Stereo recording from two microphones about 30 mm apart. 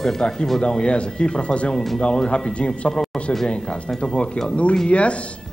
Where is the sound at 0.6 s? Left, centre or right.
Left.